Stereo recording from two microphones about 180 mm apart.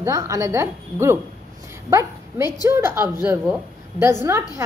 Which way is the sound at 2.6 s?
15° right (ahead or behind).